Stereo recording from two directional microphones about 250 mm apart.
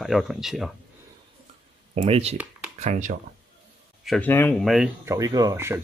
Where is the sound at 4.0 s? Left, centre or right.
Centre.